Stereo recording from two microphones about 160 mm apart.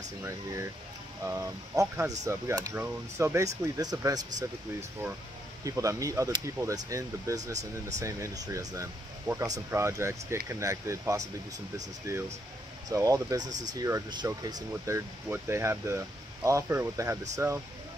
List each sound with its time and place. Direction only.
1.2 s speech: 20° right (ahead or behind)
5.6 s speech: 20° right (ahead or behind)